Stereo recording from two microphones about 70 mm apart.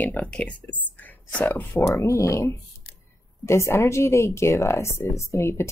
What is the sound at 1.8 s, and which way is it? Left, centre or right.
Speech, left.